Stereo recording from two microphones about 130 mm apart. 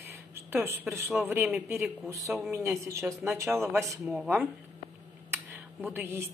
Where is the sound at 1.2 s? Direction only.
15° right (ahead or behind).